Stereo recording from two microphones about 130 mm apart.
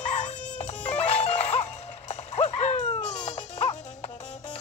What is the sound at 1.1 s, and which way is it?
Music, 55° left (ahead or behind).